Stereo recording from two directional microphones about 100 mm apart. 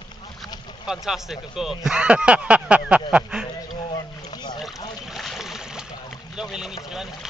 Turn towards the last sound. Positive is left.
turn(degrees=-5)  # may be behind; listen again after turning